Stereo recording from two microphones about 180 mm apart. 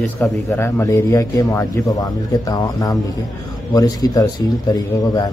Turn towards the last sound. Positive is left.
turn(degrees=20)  # may be behind; listen again after turning